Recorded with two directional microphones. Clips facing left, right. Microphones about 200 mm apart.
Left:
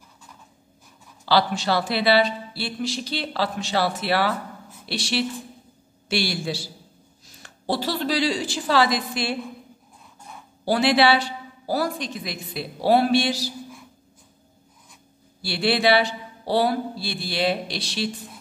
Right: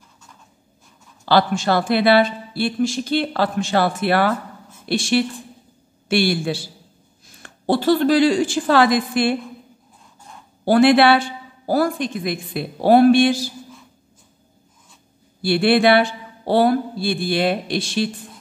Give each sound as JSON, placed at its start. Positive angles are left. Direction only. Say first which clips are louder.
{"t": 1.2, "sound": "a woman's voice", "louder": "right 4 dB", "side_deg": -50}
{"t": 10.6, "sound": "speech", "louder": "right 6 dB", "side_deg": -55}
{"t": 15.4, "sound": "speech", "louder": "right 6 dB", "side_deg": -55}